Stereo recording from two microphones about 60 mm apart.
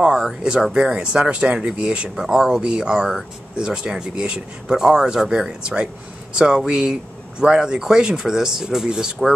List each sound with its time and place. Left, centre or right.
0.0 s speech: centre
2.2 s speech: centre